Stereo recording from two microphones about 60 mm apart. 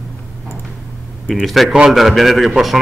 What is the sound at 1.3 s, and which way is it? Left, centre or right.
A man's voice, centre.